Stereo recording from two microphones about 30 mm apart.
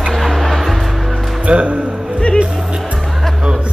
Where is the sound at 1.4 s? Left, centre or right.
Right.